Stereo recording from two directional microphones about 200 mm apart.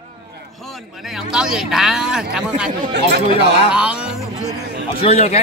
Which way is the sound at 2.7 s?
55° right (ahead or behind).